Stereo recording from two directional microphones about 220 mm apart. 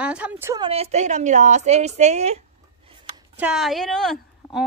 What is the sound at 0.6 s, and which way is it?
A woman's voice, 25° right (ahead or behind).